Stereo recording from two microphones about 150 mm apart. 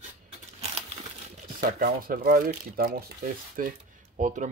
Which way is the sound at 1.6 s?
75° right (ahead or behind).